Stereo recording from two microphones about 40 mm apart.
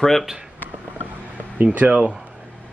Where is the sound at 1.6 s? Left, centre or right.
Right.